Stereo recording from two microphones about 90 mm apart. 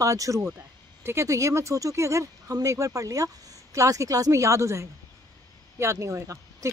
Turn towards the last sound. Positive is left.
turn(degrees=-35)  # may be behind; listen again after turning